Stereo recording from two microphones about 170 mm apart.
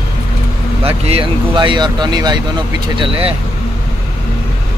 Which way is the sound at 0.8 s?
35° right (ahead or behind).